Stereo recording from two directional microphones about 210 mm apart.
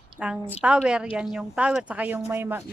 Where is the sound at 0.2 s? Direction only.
5° right (ahead or behind).